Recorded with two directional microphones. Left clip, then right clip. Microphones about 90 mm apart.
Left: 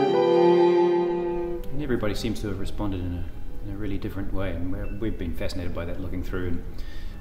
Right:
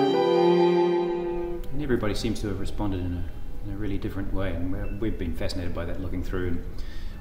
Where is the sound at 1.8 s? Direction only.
35° left (ahead or behind).